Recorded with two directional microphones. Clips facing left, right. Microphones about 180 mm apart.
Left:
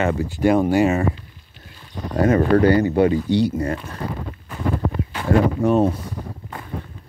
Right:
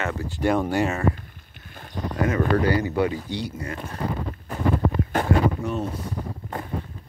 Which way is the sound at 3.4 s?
40° left (ahead or behind).